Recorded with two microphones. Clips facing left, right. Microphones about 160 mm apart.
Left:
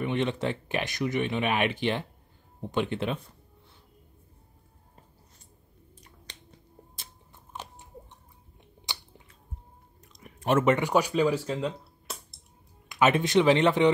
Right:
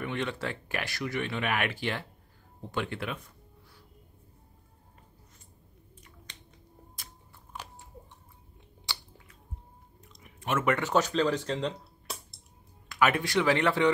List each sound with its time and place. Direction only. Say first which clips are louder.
0.0 s speech: left 5 dB; 20° left (ahead or behind)
6.3 s finger snapping: left 4 dB; 35° left (ahead or behind)
8.9 s a sound: left 1 dB; 20° left (ahead or behind)
10.2 s a sound: left 6 dB; 35° left (ahead or behind)
10.6 s speech: left 1 dB; 15° left (ahead or behind); by 12.4 s centre (ahead or behind)
12.8 s speech: left 3 dB; 20° left (ahead or behind)